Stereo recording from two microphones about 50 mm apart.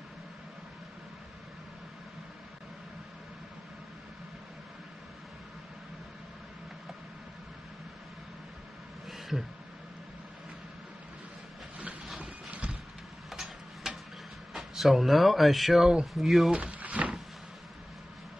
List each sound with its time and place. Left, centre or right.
12.2 s clip-clop: right
13.3 s tick-tock: centre
14.5 s speech: centre
16.5 s a sound: right